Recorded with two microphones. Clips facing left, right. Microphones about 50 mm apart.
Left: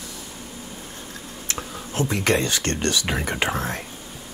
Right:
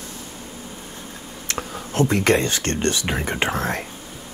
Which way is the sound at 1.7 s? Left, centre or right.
Right.